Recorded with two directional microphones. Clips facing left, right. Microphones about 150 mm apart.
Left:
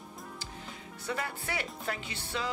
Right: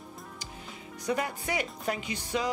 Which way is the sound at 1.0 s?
15° right (ahead or behind).